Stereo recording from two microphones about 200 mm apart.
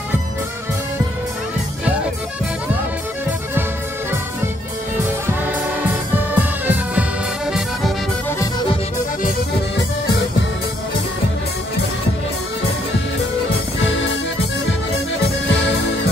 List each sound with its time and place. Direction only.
5.8 s music: 10° right (ahead or behind)
13.8 s music: 70° left (ahead or behind)